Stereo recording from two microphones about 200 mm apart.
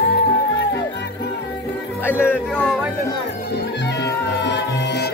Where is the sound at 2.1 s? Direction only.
10° left (ahead or behind).